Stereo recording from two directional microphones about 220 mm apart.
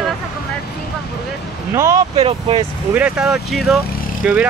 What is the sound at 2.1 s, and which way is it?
Speech, 25° right (ahead or behind).